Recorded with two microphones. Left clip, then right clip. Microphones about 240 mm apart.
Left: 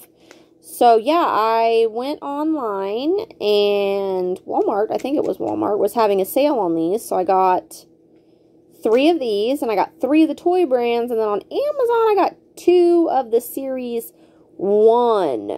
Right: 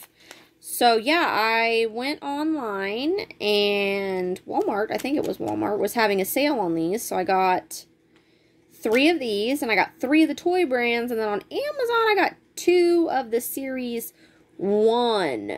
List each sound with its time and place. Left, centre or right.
0.3 s speech: right
8.8 s speech: right